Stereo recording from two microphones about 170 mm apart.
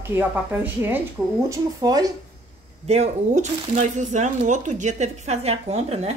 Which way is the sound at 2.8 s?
40° right (ahead or behind).